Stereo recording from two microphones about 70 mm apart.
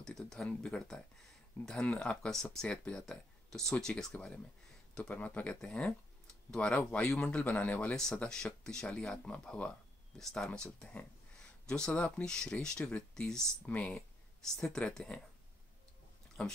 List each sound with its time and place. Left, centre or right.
0.5 s speech: centre
1.6 s speech: left
2.0 s speech: centre
5.1 s speech: left
7.9 s speech: centre
13.7 s speech: left
14.4 s speech: centre
16.4 s speech: centre